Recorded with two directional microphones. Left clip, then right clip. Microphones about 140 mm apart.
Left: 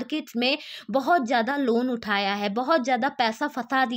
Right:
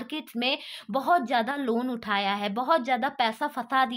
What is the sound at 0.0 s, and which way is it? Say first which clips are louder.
Speech: left 3 dB; 40° left (ahead or behind).